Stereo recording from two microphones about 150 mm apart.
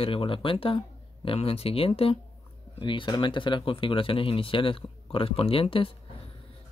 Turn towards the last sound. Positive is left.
turn(degrees=35)  # may be behind; listen again after turning